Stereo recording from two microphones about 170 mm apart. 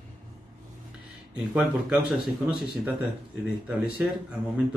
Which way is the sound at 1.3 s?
5° right (ahead or behind).